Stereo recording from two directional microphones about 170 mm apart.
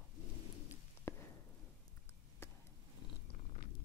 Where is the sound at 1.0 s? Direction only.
15° left (ahead or behind).